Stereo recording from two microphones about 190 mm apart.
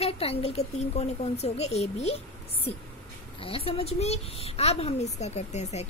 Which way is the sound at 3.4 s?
30° left (ahead or behind).